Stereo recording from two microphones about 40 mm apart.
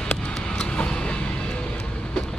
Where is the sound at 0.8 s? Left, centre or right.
Left.